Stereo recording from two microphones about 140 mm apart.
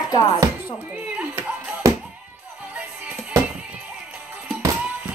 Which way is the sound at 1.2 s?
10° right (ahead or behind).